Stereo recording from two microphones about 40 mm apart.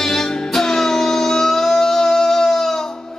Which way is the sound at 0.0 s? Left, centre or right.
Centre.